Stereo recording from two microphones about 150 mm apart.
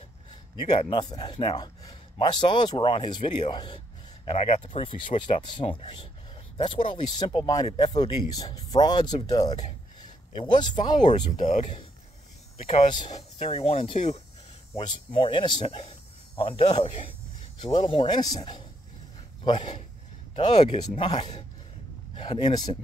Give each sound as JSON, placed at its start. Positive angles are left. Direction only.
{"t": 0.7, "sound": "speech", "side_deg": 30}
{"t": 11.0, "sound": "speech", "side_deg": 55}
{"t": 19.4, "sound": "speech", "side_deg": 30}
{"t": 20.3, "sound": "speech", "side_deg": 45}